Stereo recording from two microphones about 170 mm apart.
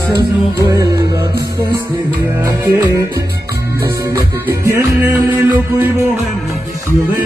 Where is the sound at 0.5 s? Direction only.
20° right (ahead or behind).